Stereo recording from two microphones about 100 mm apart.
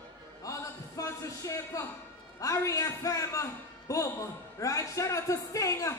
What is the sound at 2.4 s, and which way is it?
A man's voice, 35° left (ahead or behind).